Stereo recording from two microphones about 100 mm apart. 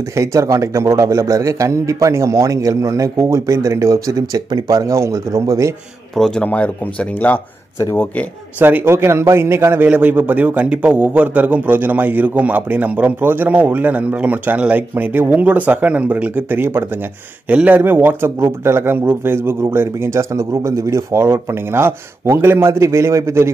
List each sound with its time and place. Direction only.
0.1 s a man's voice: 30° right (ahead or behind)
6.1 s a man's voice: 5° left (ahead or behind)
7.8 s speech: 25° left (ahead or behind)
8.5 s a man's voice: 20° right (ahead or behind)